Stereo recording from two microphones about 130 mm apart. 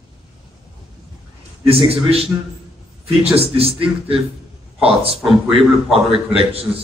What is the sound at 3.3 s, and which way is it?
A man's voice, 50° right (ahead or behind).